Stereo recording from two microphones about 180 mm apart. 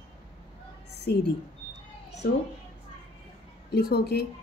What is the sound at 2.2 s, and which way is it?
Speech, 65° left (ahead or behind).